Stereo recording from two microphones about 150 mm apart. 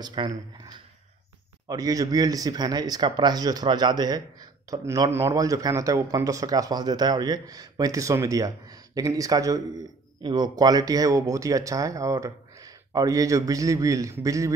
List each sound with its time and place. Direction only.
0.0 s speech: 30° right (ahead or behind)
1.7 s speech: 25° right (ahead or behind)